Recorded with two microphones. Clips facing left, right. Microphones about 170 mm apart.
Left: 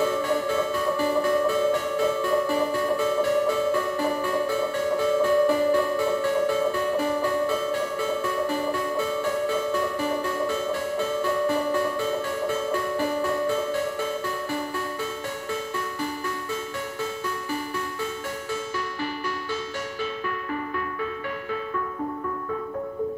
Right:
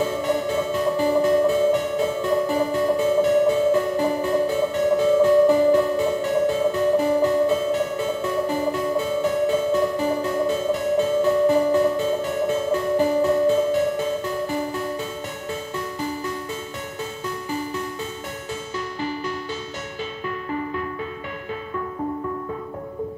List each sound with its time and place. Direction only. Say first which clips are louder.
0.0 s music: right 1 dB; 20° right (ahead or behind)